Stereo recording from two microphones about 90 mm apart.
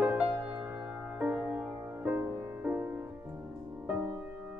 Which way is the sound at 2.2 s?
25° right (ahead or behind).